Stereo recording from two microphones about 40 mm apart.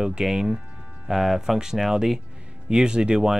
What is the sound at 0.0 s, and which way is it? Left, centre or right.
Speech, centre.